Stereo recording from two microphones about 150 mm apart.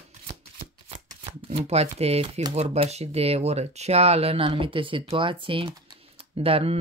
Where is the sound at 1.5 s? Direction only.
45° right (ahead or behind).